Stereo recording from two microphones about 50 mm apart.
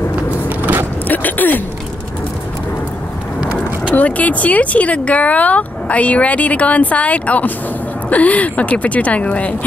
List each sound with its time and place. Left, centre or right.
0.6 s vehicle: right
1.0 s a sound: left
3.9 s speech: left